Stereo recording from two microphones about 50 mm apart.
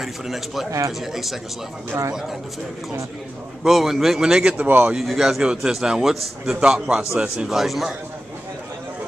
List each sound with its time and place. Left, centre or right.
0.0 s speech: centre
0.7 s speech: right
0.9 s a man's voice: centre
3.6 s speech: centre
4.2 s a man's voice: centre
4.6 s speech: right
5.0 s a man's voice: centre
7.4 s speech: centre